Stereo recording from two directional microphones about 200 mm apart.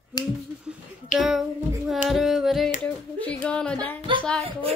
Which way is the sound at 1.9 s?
Centre (ahead or behind).